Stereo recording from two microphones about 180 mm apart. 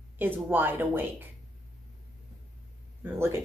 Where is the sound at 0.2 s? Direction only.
10° right (ahead or behind).